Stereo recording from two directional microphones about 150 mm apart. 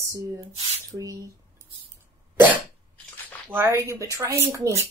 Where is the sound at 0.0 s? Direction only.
20° right (ahead or behind).